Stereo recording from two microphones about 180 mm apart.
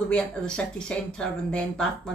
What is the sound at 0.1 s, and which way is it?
Speech, 5° left (ahead or behind).